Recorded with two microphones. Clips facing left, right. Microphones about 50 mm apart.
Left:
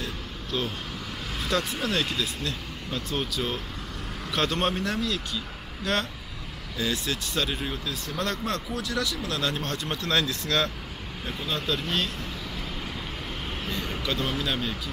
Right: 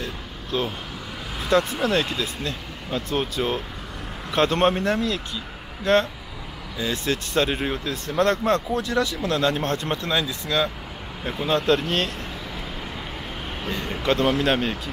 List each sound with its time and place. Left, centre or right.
0.0 s a sound: right
1.5 s speech: right
10.0 s speech: centre
11.4 s speech: right
11.7 s speech: right
14.0 s speech: right